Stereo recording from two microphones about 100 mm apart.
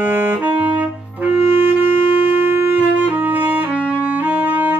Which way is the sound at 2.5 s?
20° right (ahead or behind).